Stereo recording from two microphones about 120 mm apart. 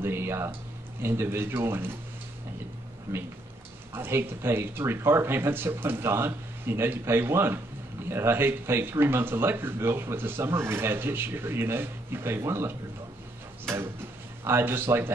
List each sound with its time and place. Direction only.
0.0 s speech: 20° right (ahead or behind)
3.1 s speech: 15° right (ahead or behind)
14.4 s speech: 20° right (ahead or behind)